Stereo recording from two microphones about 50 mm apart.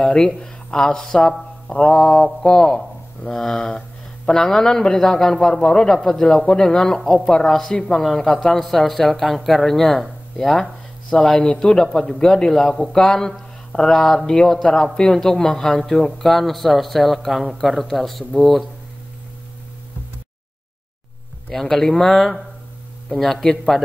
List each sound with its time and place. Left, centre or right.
0.0 s a man's voice: centre
7.7 s a man's voice: centre
21.5 s a man's voice: centre